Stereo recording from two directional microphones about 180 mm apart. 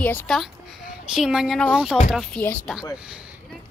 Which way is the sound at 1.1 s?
5° right (ahead or behind).